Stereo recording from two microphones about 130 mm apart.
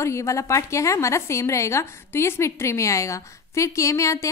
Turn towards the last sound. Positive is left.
turn(degrees=25)  # may be behind; listen again after turning